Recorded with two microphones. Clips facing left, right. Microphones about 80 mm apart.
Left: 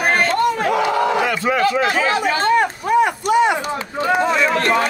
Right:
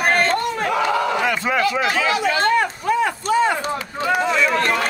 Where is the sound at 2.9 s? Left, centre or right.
Centre.